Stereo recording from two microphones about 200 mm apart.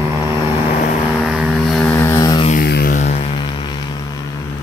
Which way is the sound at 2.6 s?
50° left (ahead or behind).